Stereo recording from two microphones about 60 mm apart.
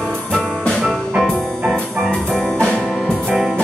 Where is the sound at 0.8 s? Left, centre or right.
Centre.